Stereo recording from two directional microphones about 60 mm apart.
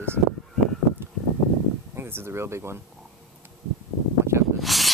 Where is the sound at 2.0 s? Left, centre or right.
Right.